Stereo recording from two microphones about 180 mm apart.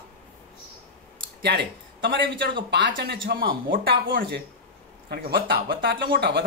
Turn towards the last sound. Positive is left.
turn(degrees=-60)  # may be behind; listen again after turning